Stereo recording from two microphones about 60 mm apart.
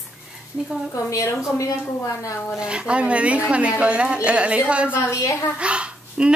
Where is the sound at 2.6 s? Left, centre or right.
Centre.